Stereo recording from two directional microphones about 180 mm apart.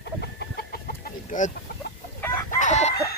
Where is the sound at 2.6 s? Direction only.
40° left (ahead or behind).